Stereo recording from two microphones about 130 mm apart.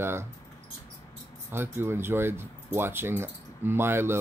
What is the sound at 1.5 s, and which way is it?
Speech, 20° right (ahead or behind).